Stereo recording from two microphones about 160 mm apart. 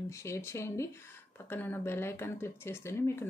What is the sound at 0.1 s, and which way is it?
Speech, 15° left (ahead or behind).